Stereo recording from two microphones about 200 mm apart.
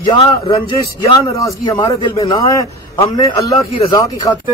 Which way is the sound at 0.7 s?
15° left (ahead or behind).